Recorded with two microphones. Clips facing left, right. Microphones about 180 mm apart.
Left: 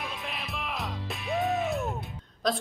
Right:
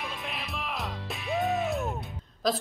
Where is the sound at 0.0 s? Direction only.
Centre (ahead or behind).